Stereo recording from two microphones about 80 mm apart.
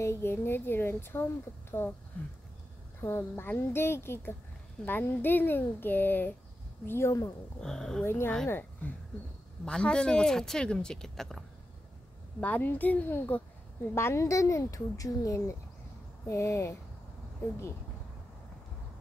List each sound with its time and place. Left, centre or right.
0.0 s speech: left
3.0 s speech: left
7.6 s speech: centre
8.0 s a woman's voice: left
9.7 s speech: centre
12.4 s speech: left
13.9 s speech: left